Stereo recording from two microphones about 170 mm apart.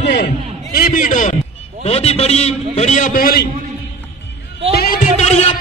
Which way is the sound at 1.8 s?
35° left (ahead or behind).